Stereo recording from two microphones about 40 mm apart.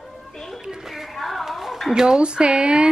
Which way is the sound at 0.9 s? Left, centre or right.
Centre.